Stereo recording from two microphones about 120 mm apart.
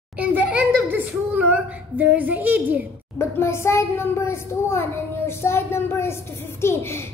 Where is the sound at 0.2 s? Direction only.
10° right (ahead or behind).